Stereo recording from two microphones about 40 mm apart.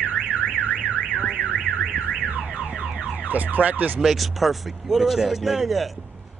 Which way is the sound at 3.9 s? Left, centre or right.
Centre.